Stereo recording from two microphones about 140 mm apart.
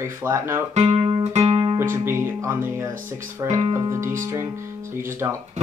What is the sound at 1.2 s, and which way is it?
Music, 50° right (ahead or behind).